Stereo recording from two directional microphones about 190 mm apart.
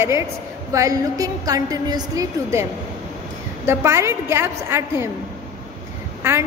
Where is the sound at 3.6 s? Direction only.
15° right (ahead or behind).